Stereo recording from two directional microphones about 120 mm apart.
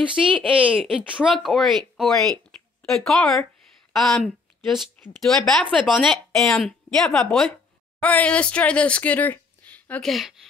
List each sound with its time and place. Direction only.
0.3 s a woman's voice: 10° right (ahead or behind); by 10.1 s 10° left (ahead or behind)
10.1 s a woman's voice: centre (ahead or behind)